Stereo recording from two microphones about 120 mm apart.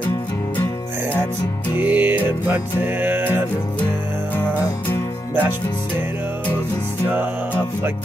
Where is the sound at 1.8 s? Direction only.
15° right (ahead or behind).